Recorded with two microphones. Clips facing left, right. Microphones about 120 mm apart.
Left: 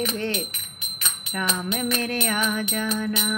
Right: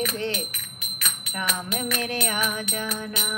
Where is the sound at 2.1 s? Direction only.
20° right (ahead or behind).